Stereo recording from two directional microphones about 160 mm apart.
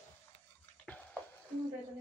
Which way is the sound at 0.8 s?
5° left (ahead or behind).